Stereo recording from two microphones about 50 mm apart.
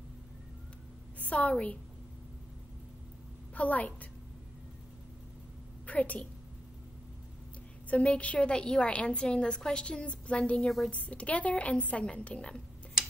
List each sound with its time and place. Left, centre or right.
1.2 s a sound: left
1.5 s a woman's voice: left
3.5 s a woman's voice: left
5.9 s a woman's voice: left
7.9 s a woman's voice: left